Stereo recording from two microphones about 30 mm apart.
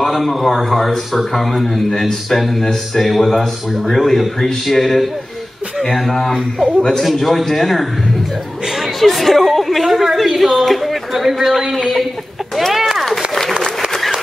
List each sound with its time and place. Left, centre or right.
0.0 s a man's voice: centre
6.8 s a man's voice: centre
8.7 s chatter: centre
9.8 s a man's voice: centre
11.1 s a man's voice: centre
12.7 s a sound: centre